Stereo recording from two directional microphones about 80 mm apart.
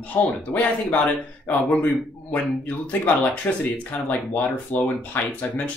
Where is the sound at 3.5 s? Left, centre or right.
Left.